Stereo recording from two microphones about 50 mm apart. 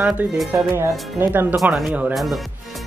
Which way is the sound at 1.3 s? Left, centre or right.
Right.